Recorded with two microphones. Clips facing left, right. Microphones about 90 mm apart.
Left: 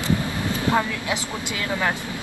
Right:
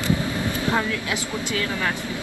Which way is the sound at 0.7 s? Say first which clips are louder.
Left 1 dB; 20° left (ahead or behind).